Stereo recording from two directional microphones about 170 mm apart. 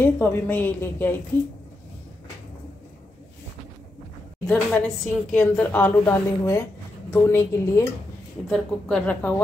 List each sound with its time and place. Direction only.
0.0 s a woman's voice: 10° left (ahead or behind)
4.5 s a woman's voice: 5° left (ahead or behind)
8.5 s a woman's voice: 5° left (ahead or behind)